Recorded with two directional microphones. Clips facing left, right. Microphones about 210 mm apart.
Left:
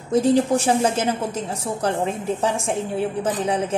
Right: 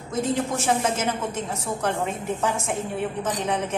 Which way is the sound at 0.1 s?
35° left (ahead or behind).